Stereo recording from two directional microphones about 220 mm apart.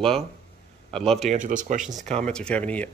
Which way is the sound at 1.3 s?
35° right (ahead or behind).